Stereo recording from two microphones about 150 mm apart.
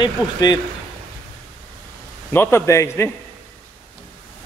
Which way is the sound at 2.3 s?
15° left (ahead or behind).